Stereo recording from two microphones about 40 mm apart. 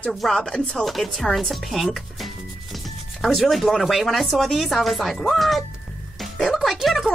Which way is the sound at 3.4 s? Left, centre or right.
Centre.